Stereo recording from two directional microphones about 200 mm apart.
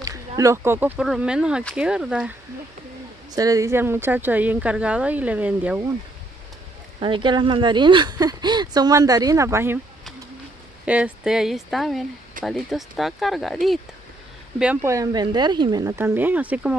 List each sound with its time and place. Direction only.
0.4 s speech: 15° right (ahead or behind)
3.3 s a woman's voice: 15° right (ahead or behind)
7.0 s a woman's voice: 25° right (ahead or behind)
10.9 s speech: 5° right (ahead or behind)
14.6 s a woman's voice: 10° right (ahead or behind)